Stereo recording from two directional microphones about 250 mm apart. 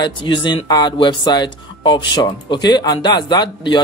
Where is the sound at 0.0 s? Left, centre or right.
Centre.